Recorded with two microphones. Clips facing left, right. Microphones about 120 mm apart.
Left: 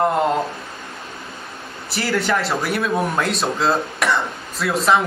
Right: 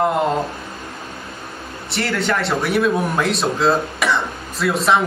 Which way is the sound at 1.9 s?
Centre (ahead or behind).